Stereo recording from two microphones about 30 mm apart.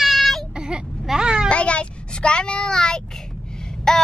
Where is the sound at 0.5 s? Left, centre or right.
Right.